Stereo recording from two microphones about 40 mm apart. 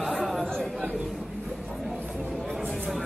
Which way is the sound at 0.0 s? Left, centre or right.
Centre.